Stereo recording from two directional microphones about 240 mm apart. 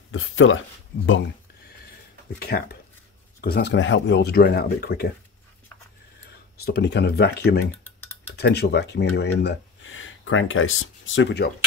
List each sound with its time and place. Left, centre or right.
0.1 s speech: left
2.3 s speech: left
6.6 s speech: left